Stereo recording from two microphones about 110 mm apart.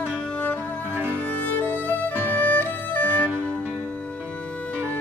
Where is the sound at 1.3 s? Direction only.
15° left (ahead or behind).